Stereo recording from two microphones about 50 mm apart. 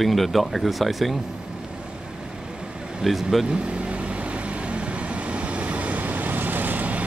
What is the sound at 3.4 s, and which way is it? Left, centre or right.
Vehicle, right.